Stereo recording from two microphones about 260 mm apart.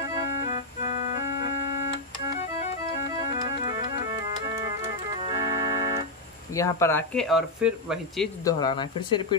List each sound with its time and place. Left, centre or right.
5.3 s organ: centre
6.5 s speech: centre
8.5 s speech: centre